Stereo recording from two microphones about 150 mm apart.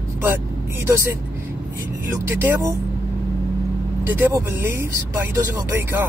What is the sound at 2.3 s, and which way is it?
Speech, 15° right (ahead or behind).